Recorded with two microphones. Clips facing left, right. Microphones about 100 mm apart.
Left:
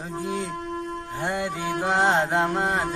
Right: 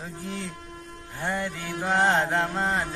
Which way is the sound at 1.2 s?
15° left (ahead or behind).